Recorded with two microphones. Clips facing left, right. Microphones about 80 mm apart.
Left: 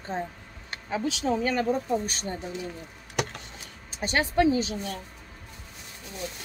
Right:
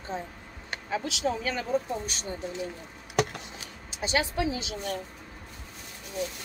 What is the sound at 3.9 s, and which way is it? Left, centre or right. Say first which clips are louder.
Speech: left 4 dB; left.